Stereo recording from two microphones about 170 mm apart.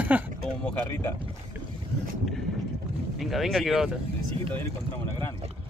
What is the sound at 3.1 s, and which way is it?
Speech, centre (ahead or behind).